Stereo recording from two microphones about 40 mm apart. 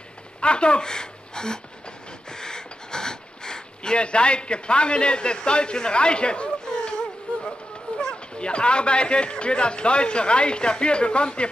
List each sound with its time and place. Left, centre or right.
0.4 s a woman's voice: left
2.2 s gasp: centre
8.0 s speech: left